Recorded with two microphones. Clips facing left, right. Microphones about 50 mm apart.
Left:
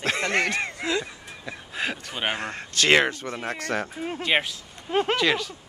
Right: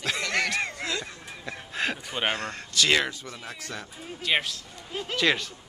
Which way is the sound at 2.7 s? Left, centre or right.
Left.